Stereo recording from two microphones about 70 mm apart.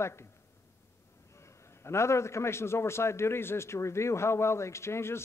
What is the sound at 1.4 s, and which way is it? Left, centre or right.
A man's voice, left.